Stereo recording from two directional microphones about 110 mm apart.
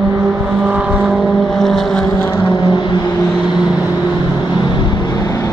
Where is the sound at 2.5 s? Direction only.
40° left (ahead or behind).